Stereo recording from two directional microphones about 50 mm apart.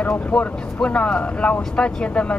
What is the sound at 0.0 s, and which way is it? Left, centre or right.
Speech, left.